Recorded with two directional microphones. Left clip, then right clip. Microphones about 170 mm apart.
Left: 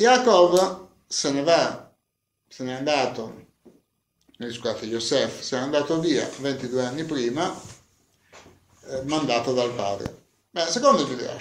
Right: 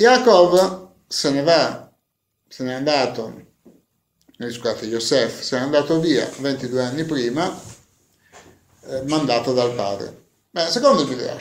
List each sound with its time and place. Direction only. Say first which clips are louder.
0.0 s speech: right 4 dB; 15° right (ahead or behind)
8.8 s speech: right 4 dB; 15° right (ahead or behind)